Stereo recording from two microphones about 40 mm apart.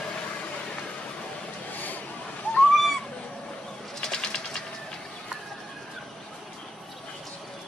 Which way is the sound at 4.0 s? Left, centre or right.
Centre.